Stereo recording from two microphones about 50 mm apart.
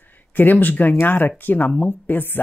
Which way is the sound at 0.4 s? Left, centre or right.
Left.